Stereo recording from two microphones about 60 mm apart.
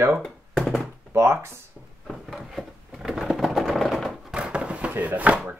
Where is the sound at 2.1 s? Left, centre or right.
Centre.